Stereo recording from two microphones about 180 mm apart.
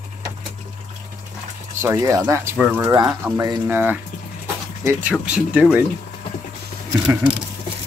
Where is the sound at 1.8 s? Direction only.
20° right (ahead or behind).